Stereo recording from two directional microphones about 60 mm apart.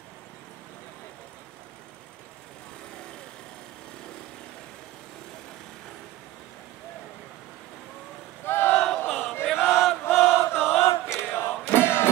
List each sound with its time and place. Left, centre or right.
8.5 s battle cry: left
9.0 s choir: left
9.7 s chant: centre
10.0 s chant: left
11.1 s music: left